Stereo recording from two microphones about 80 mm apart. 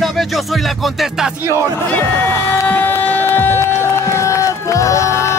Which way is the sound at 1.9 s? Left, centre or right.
Left.